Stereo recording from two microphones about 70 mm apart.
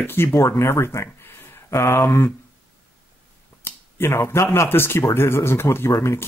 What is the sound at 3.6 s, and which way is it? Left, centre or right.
Speech, left.